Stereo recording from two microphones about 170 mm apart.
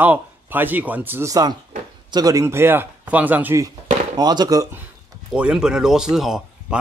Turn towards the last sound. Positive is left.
turn(degrees=-5)  # may be behind; listen again after turning